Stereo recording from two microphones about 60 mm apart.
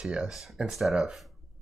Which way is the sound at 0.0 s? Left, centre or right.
Centre.